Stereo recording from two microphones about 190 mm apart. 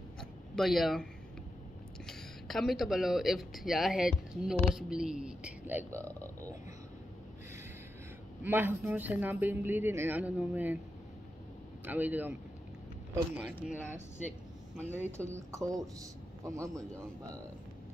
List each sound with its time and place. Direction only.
0.2 s a sound: centre (ahead or behind)
2.0 s speech: centre (ahead or behind)
8.4 s speech: 10° right (ahead or behind)
11.8 s speech: 10° right (ahead or behind)